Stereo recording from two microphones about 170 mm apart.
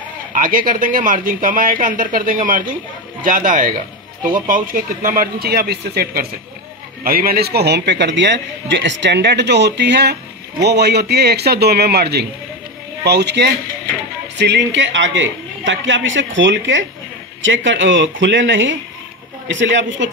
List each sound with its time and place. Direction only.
0.3 s a man's voice: 55° right (ahead or behind); by 20.1 s 90° right